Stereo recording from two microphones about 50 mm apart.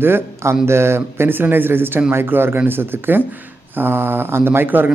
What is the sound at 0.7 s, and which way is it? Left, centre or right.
Speech, right.